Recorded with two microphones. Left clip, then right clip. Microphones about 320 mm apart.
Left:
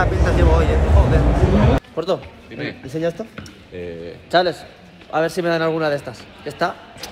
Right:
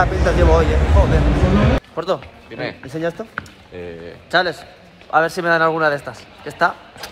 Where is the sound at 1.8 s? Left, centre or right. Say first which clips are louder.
Even; centre.